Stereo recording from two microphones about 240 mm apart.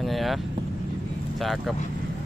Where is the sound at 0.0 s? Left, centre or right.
Centre.